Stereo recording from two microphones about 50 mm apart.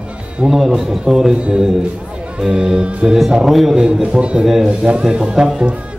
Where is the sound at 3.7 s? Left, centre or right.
Centre.